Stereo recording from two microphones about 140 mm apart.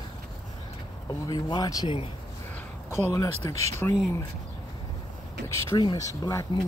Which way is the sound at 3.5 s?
50° right (ahead or behind).